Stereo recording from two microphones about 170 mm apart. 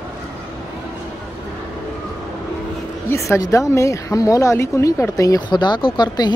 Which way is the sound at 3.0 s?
15° left (ahead or behind).